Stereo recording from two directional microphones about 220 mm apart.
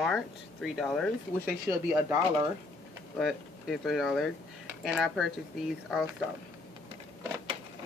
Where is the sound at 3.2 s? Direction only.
Centre (ahead or behind).